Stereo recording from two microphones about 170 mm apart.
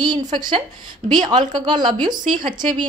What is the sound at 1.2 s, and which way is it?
A woman's voice, 25° right (ahead or behind).